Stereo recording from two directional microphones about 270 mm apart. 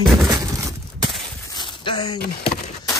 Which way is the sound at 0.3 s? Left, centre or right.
Centre.